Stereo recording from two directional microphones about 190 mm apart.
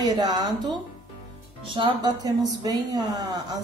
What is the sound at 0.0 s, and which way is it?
Speech, 20° right (ahead or behind).